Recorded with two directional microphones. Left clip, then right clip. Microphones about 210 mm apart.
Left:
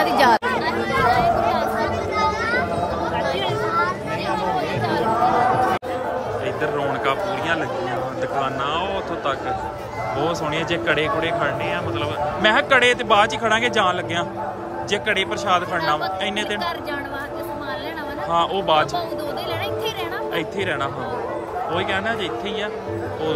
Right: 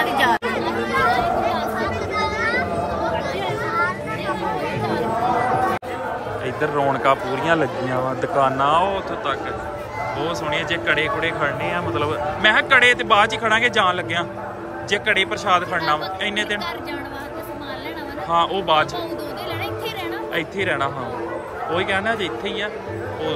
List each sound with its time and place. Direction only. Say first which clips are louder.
1.0 s chatter: left 2 dB; centre (ahead or behind)
3.2 s chatter: left 2 dB; centre (ahead or behind)
4.8 s chatter: left 2 dB; centre (ahead or behind)
6.6 s speech: right 5 dB; centre (ahead or behind)
8.9 s speech: even; 15° left (ahead or behind)
12.4 s speech: right 1 dB; 15° left (ahead or behind)
18.3 s speech: right 1 dB; 15° left (ahead or behind)
20.3 s speech: right 3 dB; 15° left (ahead or behind)